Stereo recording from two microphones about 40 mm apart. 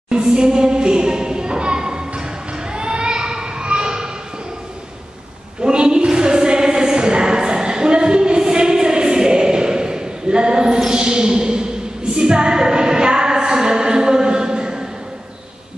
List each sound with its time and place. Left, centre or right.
0.1 s music: right
2.7 s children playing: right
5.6 s a sound: right
12.2 s music: right